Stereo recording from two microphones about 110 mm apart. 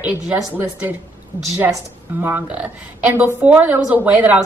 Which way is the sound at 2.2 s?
15° right (ahead or behind).